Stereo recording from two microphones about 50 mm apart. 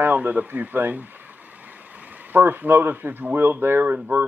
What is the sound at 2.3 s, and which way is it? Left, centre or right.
Speech, right.